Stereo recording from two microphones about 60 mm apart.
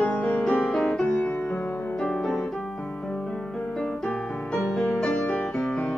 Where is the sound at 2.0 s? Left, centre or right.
Centre.